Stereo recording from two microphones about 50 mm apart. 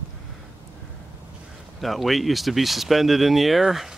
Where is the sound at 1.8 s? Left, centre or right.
Centre.